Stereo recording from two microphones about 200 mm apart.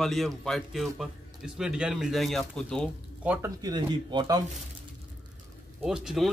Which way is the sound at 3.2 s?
5° right (ahead or behind).